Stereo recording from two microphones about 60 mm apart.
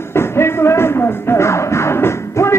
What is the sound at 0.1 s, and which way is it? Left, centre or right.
Music, left.